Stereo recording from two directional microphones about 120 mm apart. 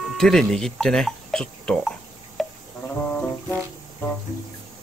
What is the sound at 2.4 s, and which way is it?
Insect, centre (ahead or behind).